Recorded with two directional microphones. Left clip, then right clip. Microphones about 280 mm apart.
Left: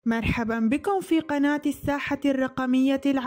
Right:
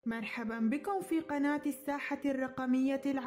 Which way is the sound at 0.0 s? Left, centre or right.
Left.